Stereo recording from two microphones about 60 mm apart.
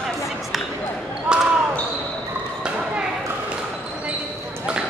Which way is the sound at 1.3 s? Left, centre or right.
Centre.